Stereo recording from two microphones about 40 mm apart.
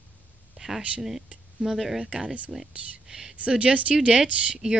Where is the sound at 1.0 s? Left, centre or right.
Centre.